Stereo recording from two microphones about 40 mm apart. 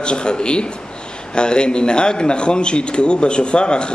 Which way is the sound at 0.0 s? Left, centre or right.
Left.